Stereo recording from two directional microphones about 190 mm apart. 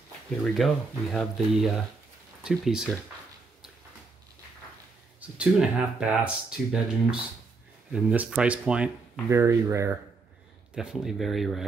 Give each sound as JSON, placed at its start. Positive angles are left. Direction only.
{"t": 0.6, "sound": "speech", "side_deg": 0}
{"t": 5.2, "sound": "speech", "side_deg": -5}
{"t": 10.7, "sound": "speech", "side_deg": -5}